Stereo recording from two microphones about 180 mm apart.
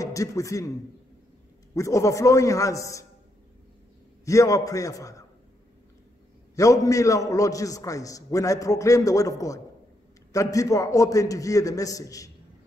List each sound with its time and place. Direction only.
0.0 s a man's voice: 20° left (ahead or behind)
1.8 s a man's voice: 15° left (ahead or behind)
4.2 s a man's voice: 15° left (ahead or behind)
6.5 s a man's voice: 20° left (ahead or behind)